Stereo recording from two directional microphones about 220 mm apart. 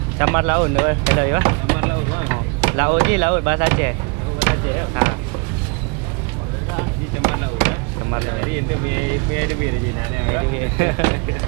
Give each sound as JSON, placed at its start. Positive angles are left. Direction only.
{"t": 0.2, "sound": "speech", "side_deg": -10}
{"t": 6.8, "sound": "a sound", "side_deg": -15}
{"t": 10.8, "sound": "speech", "side_deg": -15}